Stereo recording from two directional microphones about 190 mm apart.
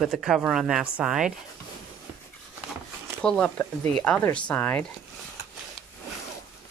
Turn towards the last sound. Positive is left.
turn(degrees=10)  # may be behind; listen again after turning